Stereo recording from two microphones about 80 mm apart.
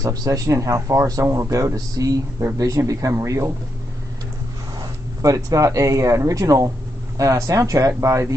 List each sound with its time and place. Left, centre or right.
0.0 s speech: right
5.2 s speech: right